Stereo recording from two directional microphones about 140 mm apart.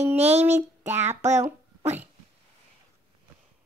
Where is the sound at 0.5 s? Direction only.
15° right (ahead or behind).